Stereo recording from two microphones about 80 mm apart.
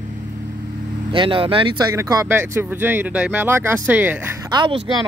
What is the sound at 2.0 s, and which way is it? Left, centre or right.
Speech, right.